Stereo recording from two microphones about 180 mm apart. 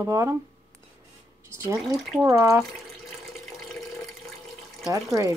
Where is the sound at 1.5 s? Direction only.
15° right (ahead or behind).